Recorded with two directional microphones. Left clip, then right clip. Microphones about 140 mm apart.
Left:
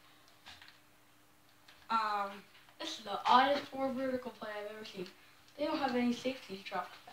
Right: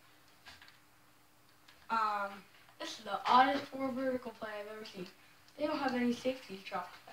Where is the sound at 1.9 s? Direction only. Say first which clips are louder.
Even; 25° left (ahead or behind).